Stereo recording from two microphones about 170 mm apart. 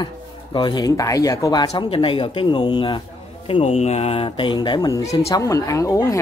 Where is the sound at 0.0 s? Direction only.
25° left (ahead or behind).